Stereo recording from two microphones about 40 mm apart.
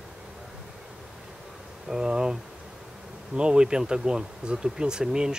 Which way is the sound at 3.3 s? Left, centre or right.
Right.